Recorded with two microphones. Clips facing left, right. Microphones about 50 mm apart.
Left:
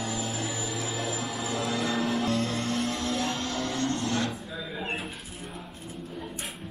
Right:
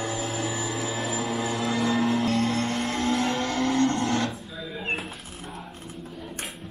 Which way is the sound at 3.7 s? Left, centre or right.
Right.